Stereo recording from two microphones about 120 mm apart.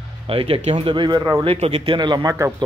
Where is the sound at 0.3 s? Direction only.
50° right (ahead or behind).